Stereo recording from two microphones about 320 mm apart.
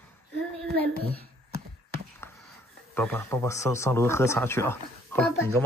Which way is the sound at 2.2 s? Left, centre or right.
Centre.